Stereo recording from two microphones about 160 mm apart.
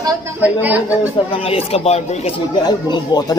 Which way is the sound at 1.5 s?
40° left (ahead or behind).